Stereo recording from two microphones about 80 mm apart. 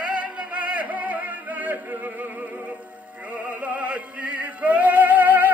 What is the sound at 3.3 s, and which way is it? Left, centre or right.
Music, centre.